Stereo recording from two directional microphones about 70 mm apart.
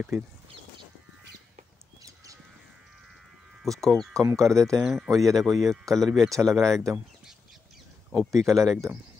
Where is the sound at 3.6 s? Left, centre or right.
Centre.